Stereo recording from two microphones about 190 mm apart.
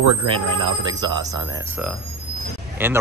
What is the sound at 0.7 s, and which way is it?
Speech, 25° right (ahead or behind).